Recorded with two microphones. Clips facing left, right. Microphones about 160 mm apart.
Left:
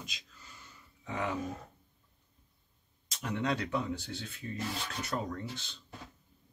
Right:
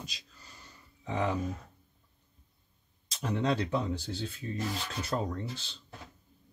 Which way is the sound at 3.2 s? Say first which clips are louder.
Right 3 dB; 30° right (ahead or behind).